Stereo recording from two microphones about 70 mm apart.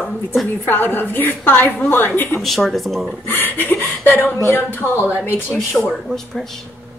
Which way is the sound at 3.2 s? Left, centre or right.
Left.